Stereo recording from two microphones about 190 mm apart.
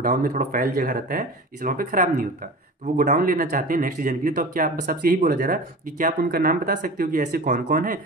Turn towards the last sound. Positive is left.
turn(degrees=-45)  # may be behind; listen again after turning